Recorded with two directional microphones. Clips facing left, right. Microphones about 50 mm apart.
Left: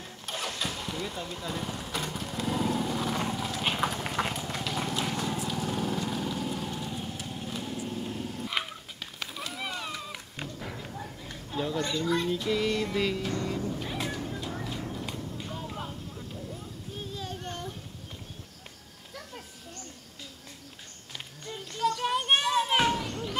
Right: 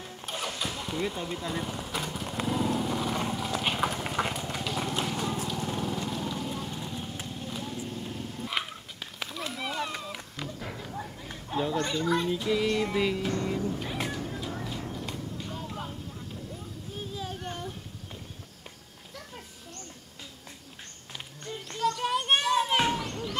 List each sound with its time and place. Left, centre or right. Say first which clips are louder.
0.0 s engine starting: right 1 dB; centre
0.9 s speech: right 4 dB; centre
2.4 s vehicle: right 1 dB; centre
3.6 s clip-clop: left 1 dB; centre
5.0 s vehicle: even; centre
5.9 s lawn mower: left 1 dB; centre
7.2 s clip-clop: left 1 dB; centre
8.0 s dog: left 2 dB; centre
8.5 s a sound: even; centre
9.5 s run: right 4 dB; centre
10.9 s a sound: right 2 dB; centre
11.8 s music: right 1 dB; centre
14.0 s a sound: even; centre
21.9 s children playing: left 1 dB; centre